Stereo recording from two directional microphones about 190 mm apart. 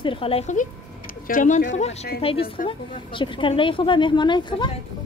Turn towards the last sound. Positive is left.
turn(degrees=25)  # may be behind; listen again after turning